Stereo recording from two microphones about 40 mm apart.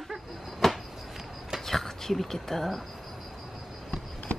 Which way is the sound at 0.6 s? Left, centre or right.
Centre.